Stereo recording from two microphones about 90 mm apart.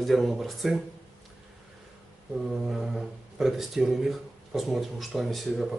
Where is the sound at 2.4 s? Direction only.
5° right (ahead or behind).